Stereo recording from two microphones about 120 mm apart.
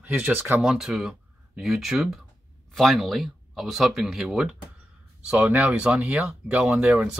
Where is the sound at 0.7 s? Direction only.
5° right (ahead or behind).